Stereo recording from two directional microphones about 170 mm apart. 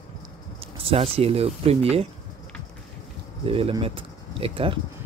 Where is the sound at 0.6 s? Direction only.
35° right (ahead or behind).